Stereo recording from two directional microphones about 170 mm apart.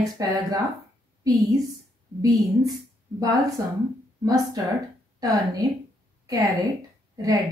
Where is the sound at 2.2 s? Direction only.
20° right (ahead or behind).